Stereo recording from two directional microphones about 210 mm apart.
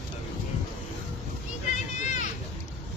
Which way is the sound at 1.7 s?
35° left (ahead or behind).